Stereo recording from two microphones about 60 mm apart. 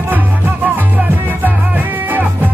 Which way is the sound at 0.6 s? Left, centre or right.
Right.